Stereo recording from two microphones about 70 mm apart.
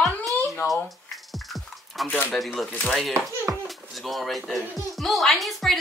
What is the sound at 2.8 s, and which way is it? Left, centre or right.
Speech, centre.